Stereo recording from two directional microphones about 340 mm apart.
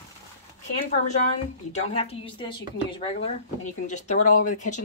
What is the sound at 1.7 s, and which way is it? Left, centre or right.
Speech, centre.